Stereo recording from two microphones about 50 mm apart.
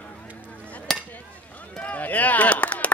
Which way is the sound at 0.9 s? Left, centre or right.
Centre.